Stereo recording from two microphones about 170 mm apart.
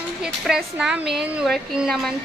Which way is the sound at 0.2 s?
5° right (ahead or behind).